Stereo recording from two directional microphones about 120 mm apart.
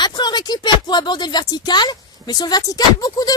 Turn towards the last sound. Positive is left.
turn(degrees=30)  # may be behind; listen again after turning